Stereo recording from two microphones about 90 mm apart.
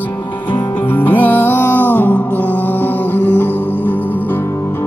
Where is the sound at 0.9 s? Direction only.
20° left (ahead or behind).